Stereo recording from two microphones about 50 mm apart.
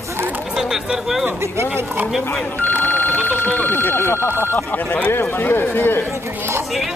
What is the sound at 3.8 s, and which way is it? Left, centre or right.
Speech, left.